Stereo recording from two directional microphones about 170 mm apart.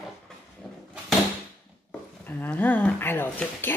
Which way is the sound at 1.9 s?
10° left (ahead or behind).